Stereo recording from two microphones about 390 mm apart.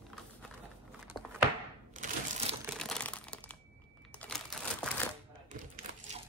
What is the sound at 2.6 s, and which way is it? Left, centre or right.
Crumpling, centre.